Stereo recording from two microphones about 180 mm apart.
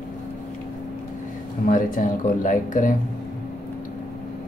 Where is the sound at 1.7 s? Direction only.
45° left (ahead or behind).